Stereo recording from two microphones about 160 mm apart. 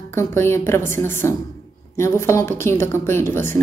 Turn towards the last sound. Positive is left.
turn(degrees=15)  # may be behind; listen again after turning